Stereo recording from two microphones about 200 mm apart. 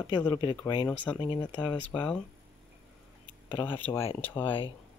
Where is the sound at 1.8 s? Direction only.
5° left (ahead or behind).